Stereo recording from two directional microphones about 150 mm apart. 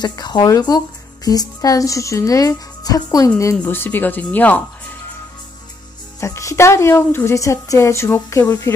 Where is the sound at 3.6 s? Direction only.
15° left (ahead or behind).